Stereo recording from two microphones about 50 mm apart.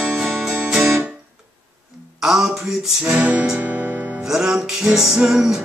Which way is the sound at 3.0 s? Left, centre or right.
Right.